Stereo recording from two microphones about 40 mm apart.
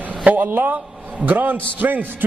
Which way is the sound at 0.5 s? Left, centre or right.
Right.